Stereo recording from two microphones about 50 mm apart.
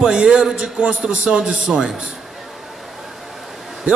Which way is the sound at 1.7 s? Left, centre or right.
Centre.